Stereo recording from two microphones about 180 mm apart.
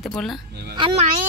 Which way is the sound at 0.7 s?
25° right (ahead or behind).